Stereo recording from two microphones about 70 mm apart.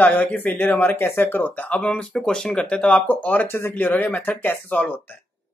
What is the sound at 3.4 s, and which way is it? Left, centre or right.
Speech, left.